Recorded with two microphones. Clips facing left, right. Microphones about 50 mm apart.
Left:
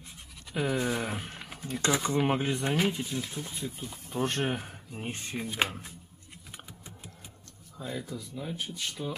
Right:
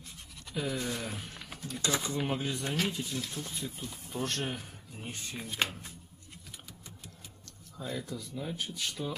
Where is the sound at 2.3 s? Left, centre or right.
Left; by 4.2 s centre.